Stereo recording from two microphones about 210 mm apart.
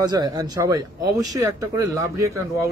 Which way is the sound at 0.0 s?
20° right (ahead or behind).